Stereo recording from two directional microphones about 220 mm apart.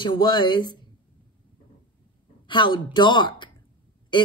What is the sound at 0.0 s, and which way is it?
Speech, 20° left (ahead or behind).